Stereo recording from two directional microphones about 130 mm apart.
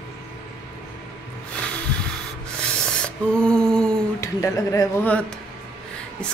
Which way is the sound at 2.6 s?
5° left (ahead or behind).